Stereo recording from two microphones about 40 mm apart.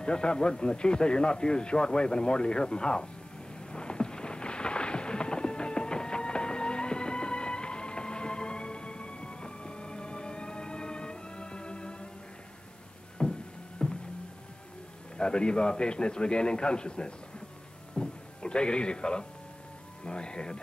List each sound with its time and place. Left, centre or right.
0.0 s a man's voice: left
3.7 s thunder: left
13.2 s music: centre
13.8 s a sound: left
15.1 s a man's voice: left
17.9 s a sound: centre
20.1 s a man's voice: left